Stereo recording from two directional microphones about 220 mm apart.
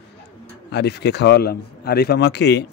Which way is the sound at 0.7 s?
50° left (ahead or behind).